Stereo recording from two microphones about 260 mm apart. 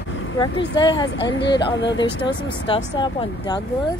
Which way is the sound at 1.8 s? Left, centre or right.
Left.